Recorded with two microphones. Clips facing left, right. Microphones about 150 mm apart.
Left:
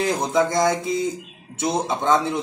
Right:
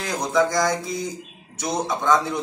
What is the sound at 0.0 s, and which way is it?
A man's voice, 25° left (ahead or behind).